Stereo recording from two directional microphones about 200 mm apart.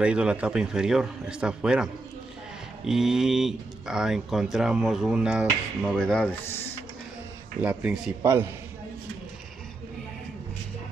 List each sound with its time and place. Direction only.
0.0 s speech: 5° right (ahead or behind)
7.6 s a man's voice: 5° right (ahead or behind)